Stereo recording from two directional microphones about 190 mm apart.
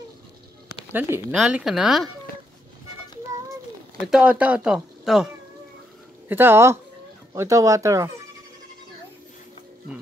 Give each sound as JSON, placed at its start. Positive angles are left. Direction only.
{"t": 0.9, "sound": "speech", "side_deg": -5}
{"t": 4.1, "sound": "speech", "side_deg": -5}